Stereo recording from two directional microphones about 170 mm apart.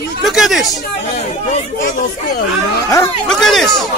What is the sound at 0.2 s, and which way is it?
Speech, centre (ahead or behind).